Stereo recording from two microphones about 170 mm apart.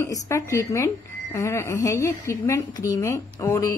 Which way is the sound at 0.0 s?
15° left (ahead or behind).